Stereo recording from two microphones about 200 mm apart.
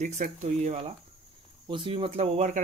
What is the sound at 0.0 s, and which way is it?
Speech, 35° right (ahead or behind).